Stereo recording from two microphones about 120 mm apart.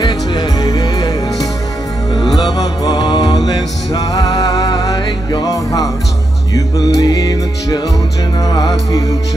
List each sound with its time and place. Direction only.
0.0 s music: 40° left (ahead or behind)